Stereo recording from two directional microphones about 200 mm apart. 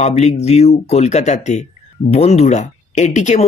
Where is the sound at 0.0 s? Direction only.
35° left (ahead or behind).